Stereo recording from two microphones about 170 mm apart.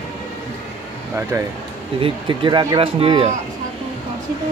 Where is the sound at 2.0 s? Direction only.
30° right (ahead or behind).